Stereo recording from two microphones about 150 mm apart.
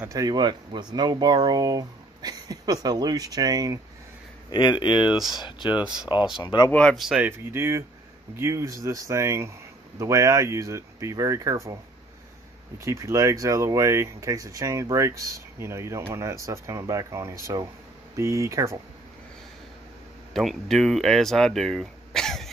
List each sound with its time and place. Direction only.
0.0 s speech: 25° right (ahead or behind)
4.5 s speech: 30° left (ahead or behind)
5.1 s speech: centre (ahead or behind)
5.4 s speech: 30° left (ahead or behind)
6.7 s speech: 5° left (ahead or behind)
7.2 s speech: 15° right (ahead or behind)
12.7 s speech: 20° right (ahead or behind)
20.3 s speech: centre (ahead or behind)